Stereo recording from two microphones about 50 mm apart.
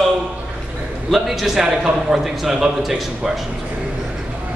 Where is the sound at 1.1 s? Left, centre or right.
Centre.